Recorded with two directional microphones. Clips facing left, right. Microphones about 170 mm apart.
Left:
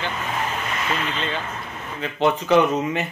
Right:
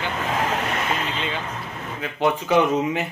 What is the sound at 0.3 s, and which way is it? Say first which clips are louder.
Vehicle: right 3 dB; 90° right.